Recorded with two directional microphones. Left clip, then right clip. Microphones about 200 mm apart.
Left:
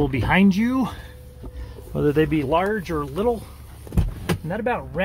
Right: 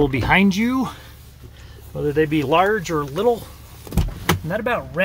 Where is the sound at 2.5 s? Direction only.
10° right (ahead or behind).